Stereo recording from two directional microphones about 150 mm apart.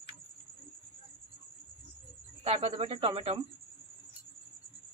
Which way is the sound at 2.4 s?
40° right (ahead or behind).